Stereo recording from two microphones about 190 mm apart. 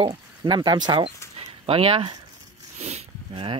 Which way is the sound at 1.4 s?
30° right (ahead or behind).